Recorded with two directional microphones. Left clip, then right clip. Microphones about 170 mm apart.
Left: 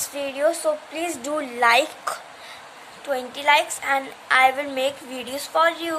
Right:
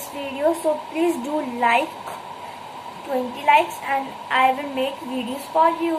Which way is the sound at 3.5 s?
55° left (ahead or behind).